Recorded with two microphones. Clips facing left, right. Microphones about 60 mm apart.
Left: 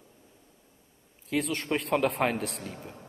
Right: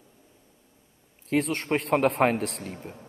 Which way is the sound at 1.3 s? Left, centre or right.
Right.